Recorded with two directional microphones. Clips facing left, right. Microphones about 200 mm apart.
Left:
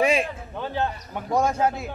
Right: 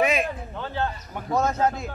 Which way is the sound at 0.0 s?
30° left (ahead or behind).